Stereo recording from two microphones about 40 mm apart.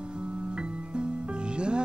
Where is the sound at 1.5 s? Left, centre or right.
Right.